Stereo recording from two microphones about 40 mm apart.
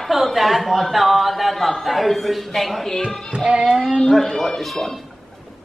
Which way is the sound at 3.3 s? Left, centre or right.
Right.